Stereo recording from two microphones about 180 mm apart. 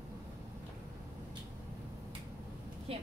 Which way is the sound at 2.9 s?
30° right (ahead or behind).